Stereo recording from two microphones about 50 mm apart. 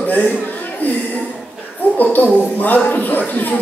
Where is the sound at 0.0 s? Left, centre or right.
Left.